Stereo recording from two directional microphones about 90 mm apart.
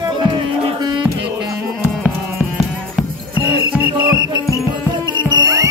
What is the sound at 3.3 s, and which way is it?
Music, 20° right (ahead or behind).